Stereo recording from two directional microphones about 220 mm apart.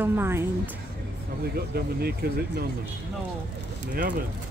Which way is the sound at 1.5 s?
45° right (ahead or behind).